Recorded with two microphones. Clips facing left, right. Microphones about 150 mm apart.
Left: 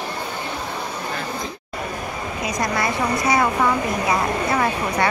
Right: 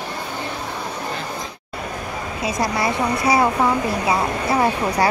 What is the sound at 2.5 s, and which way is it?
A woman's voice, 25° right (ahead or behind).